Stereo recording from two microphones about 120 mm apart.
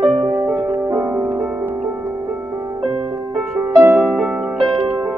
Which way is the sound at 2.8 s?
45° right (ahead or behind).